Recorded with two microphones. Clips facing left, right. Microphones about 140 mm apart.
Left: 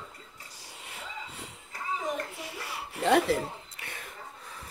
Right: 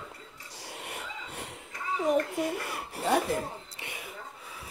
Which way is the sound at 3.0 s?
75° left (ahead or behind).